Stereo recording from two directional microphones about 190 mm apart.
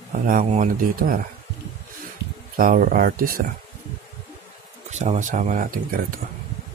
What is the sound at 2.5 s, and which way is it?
Speech, 45° right (ahead or behind).